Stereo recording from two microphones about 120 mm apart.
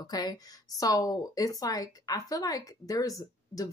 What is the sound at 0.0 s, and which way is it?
A woman's voice, 35° left (ahead or behind).